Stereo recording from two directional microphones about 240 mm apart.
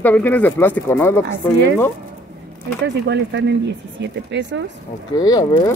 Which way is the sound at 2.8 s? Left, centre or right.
Right.